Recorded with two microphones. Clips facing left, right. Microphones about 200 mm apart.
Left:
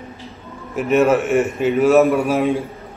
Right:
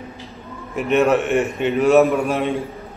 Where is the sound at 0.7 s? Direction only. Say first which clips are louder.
Left 1 dB; centre (ahead or behind).